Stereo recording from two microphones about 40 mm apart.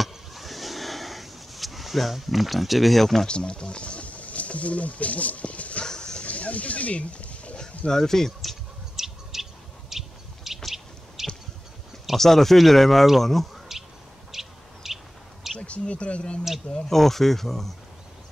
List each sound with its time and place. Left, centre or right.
0.0 s a sound: centre
3.3 s speech: left
5.9 s a sound: left
6.2 s a sound: left
7.6 s speech: centre
8.4 s bird: centre
12.2 s speech: centre
14.3 s bird: centre
15.6 s speech: left
16.9 s speech: centre